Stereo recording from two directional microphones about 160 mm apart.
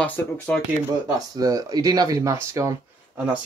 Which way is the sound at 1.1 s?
20° right (ahead or behind).